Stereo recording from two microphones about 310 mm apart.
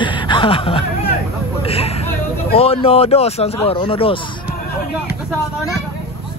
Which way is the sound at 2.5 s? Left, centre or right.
Centre.